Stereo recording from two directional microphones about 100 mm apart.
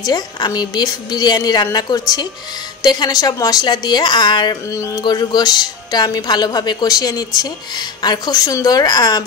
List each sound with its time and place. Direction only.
0.0 s speech: 40° left (ahead or behind)